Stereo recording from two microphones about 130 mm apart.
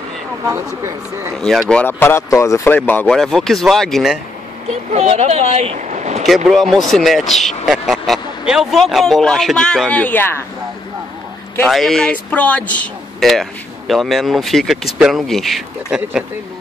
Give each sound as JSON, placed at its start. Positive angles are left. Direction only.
{"t": 0.5, "sound": "speech", "side_deg": -20}
{"t": 1.3, "sound": "speech", "side_deg": 0}
{"t": 1.8, "sound": "speech", "side_deg": 15}
{"t": 3.1, "sound": "speech", "side_deg": 5}
{"t": 4.9, "sound": "speech", "side_deg": -55}
{"t": 6.2, "sound": "speech", "side_deg": 0}
{"t": 11.6, "sound": "speech", "side_deg": 0}